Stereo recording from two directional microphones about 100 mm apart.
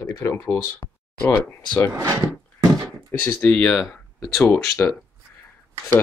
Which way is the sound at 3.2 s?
10° left (ahead or behind).